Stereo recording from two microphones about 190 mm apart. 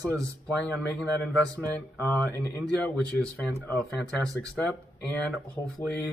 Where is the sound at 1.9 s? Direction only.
10° left (ahead or behind).